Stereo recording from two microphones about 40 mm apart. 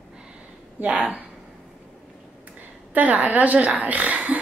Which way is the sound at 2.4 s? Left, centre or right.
Right.